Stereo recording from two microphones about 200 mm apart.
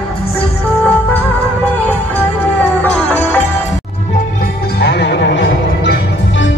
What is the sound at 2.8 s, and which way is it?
Music, 10° left (ahead or behind).